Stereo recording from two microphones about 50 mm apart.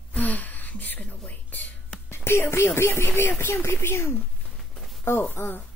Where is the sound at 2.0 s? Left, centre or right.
Left.